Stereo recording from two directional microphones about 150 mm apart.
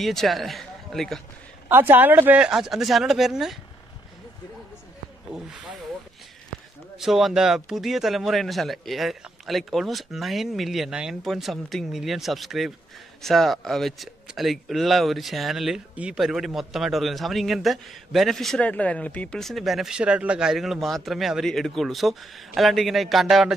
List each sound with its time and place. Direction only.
0.0 s speech: centre (ahead or behind)
1.7 s speech: 15° right (ahead or behind)
5.3 s speech: 5° right (ahead or behind)
7.0 s speech: centre (ahead or behind)